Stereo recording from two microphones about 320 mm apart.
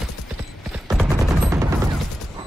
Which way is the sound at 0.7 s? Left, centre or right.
Centre.